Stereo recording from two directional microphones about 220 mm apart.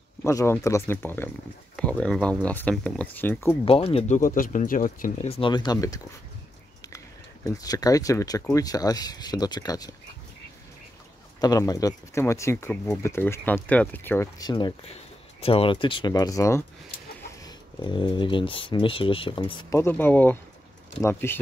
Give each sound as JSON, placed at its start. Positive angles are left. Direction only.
{"t": 0.2, "sound": "speech", "side_deg": 15}
{"t": 3.6, "sound": "speech", "side_deg": 25}
{"t": 7.4, "sound": "speech", "side_deg": 15}
{"t": 11.4, "sound": "speech", "side_deg": 15}